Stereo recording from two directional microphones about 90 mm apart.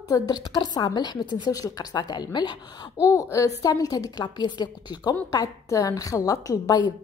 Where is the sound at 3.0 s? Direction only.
35° left (ahead or behind); by 5.1 s 50° left (ahead or behind).